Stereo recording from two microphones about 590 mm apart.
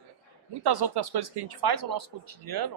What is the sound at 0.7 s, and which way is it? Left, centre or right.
A man's voice, right.